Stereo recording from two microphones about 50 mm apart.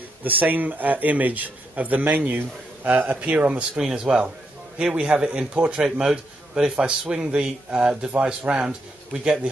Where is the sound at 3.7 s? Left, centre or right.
Centre.